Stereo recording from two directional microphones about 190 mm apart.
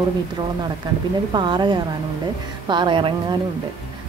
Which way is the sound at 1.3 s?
25° right (ahead or behind).